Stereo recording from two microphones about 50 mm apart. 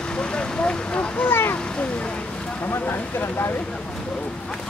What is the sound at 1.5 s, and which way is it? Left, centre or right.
Vehicle, left.